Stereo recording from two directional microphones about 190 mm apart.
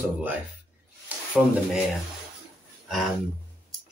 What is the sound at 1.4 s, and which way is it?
Speech, centre (ahead or behind).